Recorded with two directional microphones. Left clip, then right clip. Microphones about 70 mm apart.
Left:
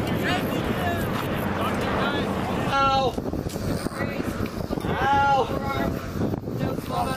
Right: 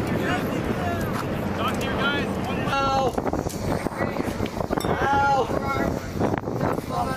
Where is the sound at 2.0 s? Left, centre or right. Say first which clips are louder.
Right 1 dB; centre.